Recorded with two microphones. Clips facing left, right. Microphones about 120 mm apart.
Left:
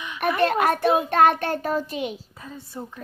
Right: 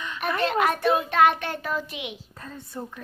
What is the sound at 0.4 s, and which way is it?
Child singing, 50° left (ahead or behind).